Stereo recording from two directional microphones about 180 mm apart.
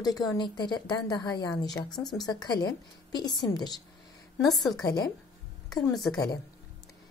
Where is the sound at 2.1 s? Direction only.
20° left (ahead or behind).